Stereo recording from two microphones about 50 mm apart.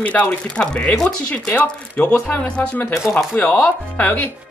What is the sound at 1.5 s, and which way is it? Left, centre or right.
Speech, left.